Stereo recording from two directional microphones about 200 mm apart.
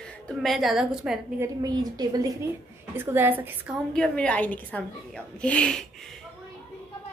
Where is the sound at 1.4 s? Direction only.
20° right (ahead or behind).